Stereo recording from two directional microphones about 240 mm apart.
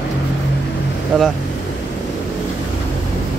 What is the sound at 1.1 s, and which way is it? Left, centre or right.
Speech, centre.